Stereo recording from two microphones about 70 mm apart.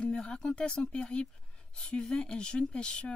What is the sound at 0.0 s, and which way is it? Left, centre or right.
Speech, centre.